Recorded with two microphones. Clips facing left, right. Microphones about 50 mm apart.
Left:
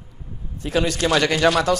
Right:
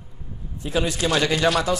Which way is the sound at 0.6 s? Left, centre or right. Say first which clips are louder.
Left 3 dB; left.